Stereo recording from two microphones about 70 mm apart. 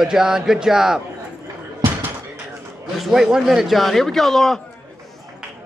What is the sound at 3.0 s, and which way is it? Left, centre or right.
A man's voice, centre.